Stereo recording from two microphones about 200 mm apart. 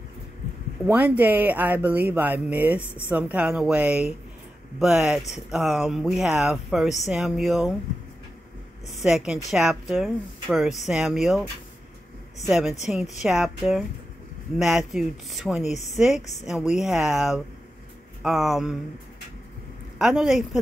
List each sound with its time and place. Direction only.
0.8 s speech: 10° right (ahead or behind)
8.8 s speech: 5° right (ahead or behind)
12.4 s speech: centre (ahead or behind)
20.0 s speech: centre (ahead or behind)